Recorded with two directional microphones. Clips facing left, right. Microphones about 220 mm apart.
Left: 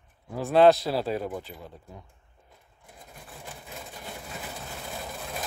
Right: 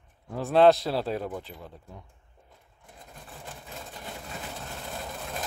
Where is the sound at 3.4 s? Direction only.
5° left (ahead or behind).